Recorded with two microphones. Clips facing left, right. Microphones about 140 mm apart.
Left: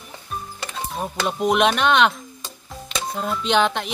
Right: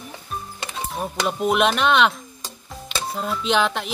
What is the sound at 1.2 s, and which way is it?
Speech, centre (ahead or behind).